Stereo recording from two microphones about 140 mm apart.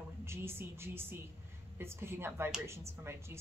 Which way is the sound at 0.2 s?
15° right (ahead or behind).